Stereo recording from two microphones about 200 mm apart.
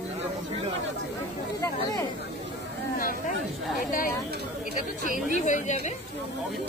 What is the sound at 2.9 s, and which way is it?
Speech, 45° left (ahead or behind).